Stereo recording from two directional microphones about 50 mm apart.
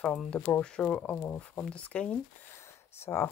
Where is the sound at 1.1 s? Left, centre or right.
Left.